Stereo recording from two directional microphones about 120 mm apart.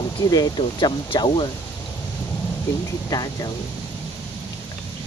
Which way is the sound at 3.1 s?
30° left (ahead or behind).